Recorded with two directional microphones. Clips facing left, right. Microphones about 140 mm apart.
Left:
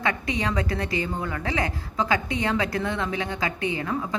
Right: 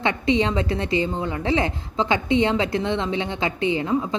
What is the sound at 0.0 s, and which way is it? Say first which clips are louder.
A woman's voice: right 6 dB; 25° right (ahead or behind).